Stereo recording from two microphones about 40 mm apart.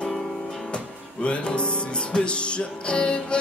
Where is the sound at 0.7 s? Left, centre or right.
Left.